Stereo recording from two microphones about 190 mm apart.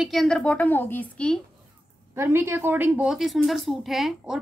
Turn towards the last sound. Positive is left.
turn(degrees=-5)  # may be behind; listen again after turning